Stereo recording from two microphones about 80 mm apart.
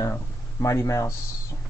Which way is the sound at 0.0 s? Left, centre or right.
Left.